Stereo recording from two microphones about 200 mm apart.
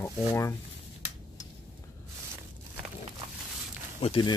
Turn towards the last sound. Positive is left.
turn(degrees=25)  # may be behind; listen again after turning